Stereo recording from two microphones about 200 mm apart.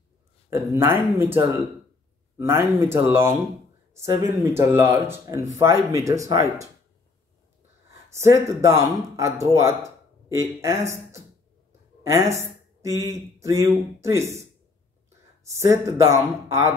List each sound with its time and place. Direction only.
0.5 s speech: 10° right (ahead or behind)
8.1 s speech: 15° right (ahead or behind)